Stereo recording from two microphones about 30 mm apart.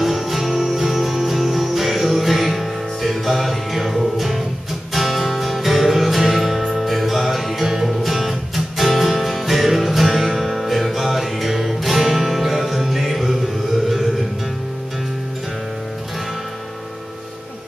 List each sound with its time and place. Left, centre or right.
0.0 s music: centre
7.6 s music: centre